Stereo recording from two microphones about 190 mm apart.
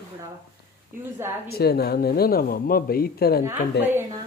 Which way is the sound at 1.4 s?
55° left (ahead or behind).